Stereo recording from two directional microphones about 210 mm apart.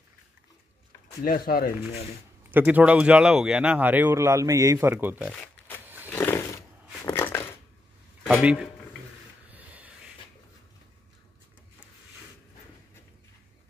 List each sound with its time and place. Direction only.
1.2 s speech: 45° left (ahead or behind)
2.5 s speech: 5° right (ahead or behind)
5.3 s shuffling cards: 5° left (ahead or behind)
6.0 s a sound: 10° left (ahead or behind)
8.3 s speech: 5° right (ahead or behind)
9.5 s a sound: 5° right (ahead or behind)